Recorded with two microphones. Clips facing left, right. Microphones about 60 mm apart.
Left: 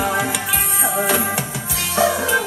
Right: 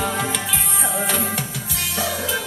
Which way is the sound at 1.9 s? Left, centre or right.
Left.